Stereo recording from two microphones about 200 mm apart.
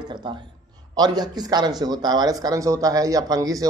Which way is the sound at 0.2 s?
20° right (ahead or behind).